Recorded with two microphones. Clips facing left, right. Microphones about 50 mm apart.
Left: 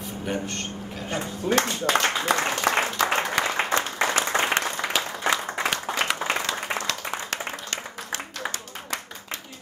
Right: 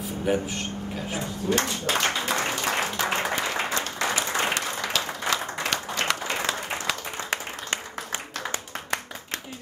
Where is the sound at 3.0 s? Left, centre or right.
Left.